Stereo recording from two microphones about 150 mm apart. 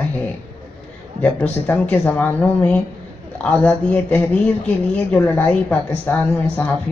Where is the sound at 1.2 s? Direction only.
10° left (ahead or behind).